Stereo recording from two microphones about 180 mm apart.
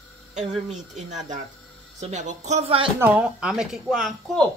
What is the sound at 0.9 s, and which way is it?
A woman's voice, 40° right (ahead or behind).